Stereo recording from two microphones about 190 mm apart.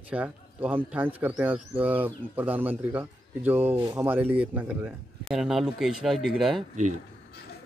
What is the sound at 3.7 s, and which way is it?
Speech, 20° right (ahead or behind).